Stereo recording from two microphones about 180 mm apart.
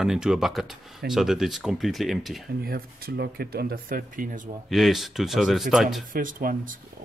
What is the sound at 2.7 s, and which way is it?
Speech, 55° right (ahead or behind).